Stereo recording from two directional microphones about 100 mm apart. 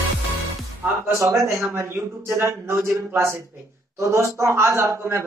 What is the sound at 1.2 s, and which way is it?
A woman's voice, 30° right (ahead or behind).